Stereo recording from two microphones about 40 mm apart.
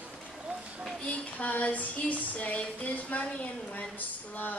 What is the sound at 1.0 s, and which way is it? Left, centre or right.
Female singing, left.